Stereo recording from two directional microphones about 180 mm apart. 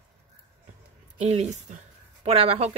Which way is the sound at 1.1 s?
35° right (ahead or behind).